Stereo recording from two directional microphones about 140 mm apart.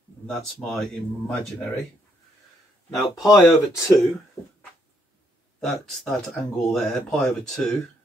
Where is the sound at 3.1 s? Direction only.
25° left (ahead or behind).